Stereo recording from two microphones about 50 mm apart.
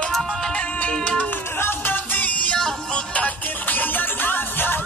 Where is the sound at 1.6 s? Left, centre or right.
Left.